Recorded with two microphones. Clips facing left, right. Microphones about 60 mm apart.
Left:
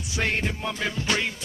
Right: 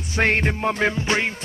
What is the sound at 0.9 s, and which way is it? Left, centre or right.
Music, right.